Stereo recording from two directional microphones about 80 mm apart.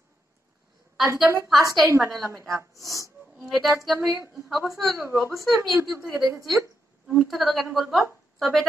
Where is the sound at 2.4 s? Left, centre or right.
Right.